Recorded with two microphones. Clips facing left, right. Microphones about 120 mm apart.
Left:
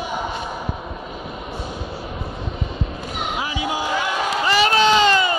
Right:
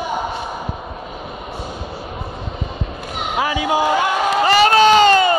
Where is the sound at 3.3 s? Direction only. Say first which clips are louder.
Right 9 dB; 65° right (ahead or behind).